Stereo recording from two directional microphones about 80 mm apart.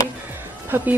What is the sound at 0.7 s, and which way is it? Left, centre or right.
Speech, right.